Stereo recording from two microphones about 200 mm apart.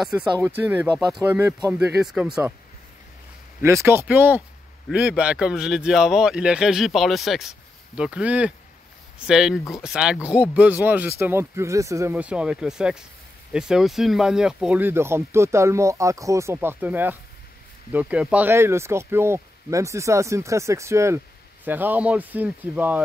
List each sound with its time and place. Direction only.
0.1 s speech: 20° right (ahead or behind)
3.6 s speech: 10° right (ahead or behind)